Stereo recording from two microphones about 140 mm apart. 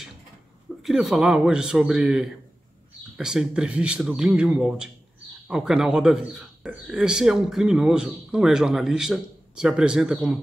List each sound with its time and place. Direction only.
0.8 s speech: centre (ahead or behind)